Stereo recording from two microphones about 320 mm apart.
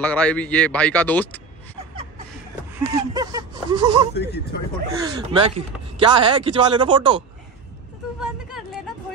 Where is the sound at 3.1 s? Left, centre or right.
Centre.